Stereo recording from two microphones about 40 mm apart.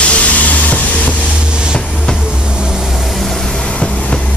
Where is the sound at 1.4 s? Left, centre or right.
Right.